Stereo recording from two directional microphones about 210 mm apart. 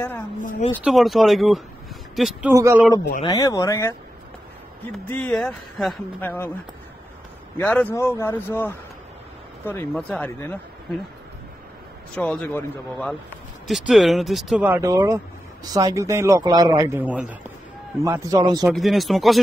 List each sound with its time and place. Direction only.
0.4 s speech: 40° left (ahead or behind)
0.8 s speech: centre (ahead or behind)
2.5 s a man's voice: 10° right (ahead or behind)
3.2 s speech: 15° left (ahead or behind)
4.9 s speech: 5° left (ahead or behind)
7.5 s speech: 10° left (ahead or behind)
12.2 s a man's voice: 5° left (ahead or behind); by 18.7 s 20° right (ahead or behind)
18.7 s speech: centre (ahead or behind)